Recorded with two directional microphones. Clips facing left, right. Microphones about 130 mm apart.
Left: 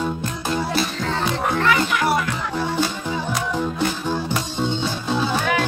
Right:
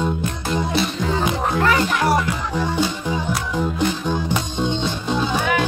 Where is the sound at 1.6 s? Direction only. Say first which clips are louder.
Right 2 dB; 40° right (ahead or behind).